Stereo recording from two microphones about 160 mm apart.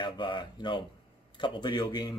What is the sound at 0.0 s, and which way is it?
Speech, 30° left (ahead or behind).